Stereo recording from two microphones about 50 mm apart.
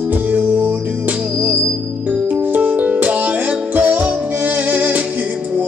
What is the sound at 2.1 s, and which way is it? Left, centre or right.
Music, right.